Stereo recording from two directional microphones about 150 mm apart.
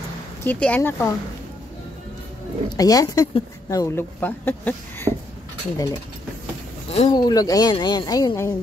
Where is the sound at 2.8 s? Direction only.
25° left (ahead or behind).